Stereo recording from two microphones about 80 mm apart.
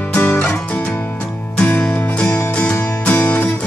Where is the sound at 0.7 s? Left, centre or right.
Centre.